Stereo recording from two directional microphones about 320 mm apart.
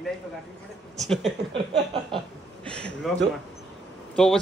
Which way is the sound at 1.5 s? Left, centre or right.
Centre.